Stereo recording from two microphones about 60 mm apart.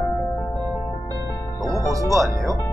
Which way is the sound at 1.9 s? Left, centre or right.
Right.